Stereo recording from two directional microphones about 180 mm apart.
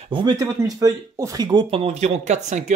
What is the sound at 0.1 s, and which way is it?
Speech, 25° right (ahead or behind).